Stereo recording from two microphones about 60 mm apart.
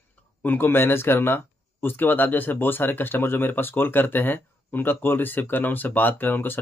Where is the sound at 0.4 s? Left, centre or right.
Left.